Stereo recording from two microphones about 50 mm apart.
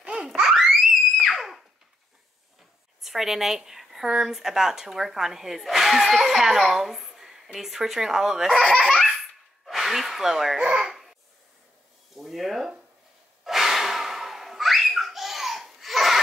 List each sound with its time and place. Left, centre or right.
0.0 s a sound: right
0.4 s theremin: centre
1.3 s a sound: centre
3.0 s a woman's voice: centre
8.5 s speech: centre
8.8 s baby laughter: centre
10.6 s a child's voice: centre
10.9 s babbling: centre
12.2 s speech: centre
13.4 s breathing: centre